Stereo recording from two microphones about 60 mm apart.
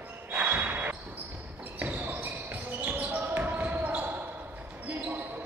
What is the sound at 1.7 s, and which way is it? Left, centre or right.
Basketball bounce, right.